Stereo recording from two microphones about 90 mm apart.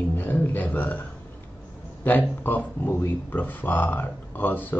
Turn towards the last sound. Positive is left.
turn(degrees=20)  # may be behind; listen again after turning